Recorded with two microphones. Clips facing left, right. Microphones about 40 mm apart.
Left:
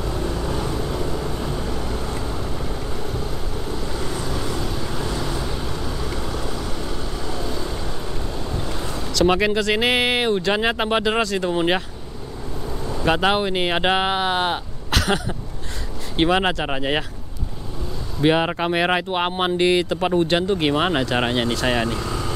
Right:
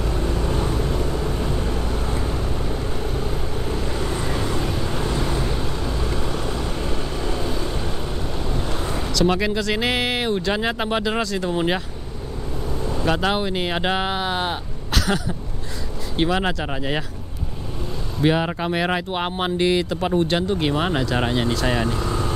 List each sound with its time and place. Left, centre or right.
0.0 s vehicle: centre
3.0 s vehicle: right
9.2 s speech: centre
13.0 s speech: left
14.9 s a sound: left
16.2 s speech: left
18.2 s speech: left
22.0 s vehicle: right